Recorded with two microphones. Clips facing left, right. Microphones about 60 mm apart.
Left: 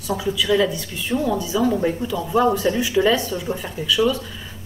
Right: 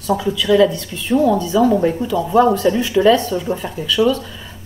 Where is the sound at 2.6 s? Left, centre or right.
Centre.